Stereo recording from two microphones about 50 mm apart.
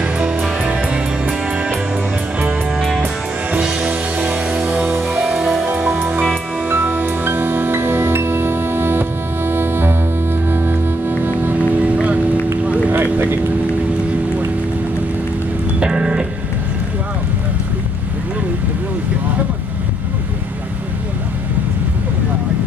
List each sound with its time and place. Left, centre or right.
0.6 s music: right
3.5 s music: centre
5.2 s music: centre
5.9 s music: right
11.5 s music: right
12.6 s a sound: right
12.9 s vehicle: right
15.8 s music: centre